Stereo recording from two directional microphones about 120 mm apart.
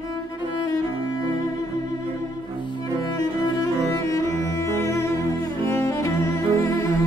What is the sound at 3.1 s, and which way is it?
Cello, 30° left (ahead or behind).